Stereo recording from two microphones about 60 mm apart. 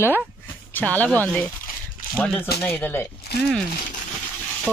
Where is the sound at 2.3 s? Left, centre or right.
Left.